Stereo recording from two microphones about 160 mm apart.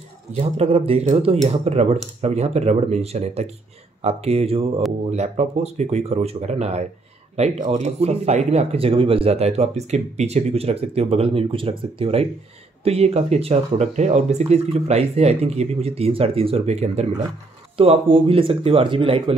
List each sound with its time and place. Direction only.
0.3 s speech: 40° right (ahead or behind)